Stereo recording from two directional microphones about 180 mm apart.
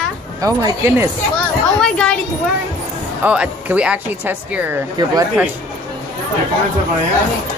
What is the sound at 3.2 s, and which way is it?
Speech, 10° right (ahead or behind).